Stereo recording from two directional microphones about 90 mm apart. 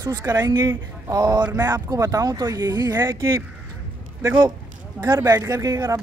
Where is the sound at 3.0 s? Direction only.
30° right (ahead or behind).